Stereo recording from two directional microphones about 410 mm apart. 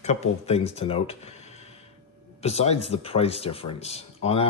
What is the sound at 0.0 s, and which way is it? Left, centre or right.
Speech, centre.